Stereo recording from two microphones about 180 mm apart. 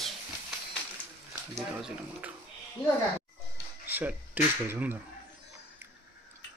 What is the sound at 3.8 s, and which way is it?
Speech, 10° right (ahead or behind).